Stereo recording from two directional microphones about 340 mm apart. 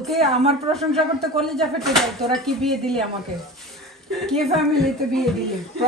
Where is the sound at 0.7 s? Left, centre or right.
Centre.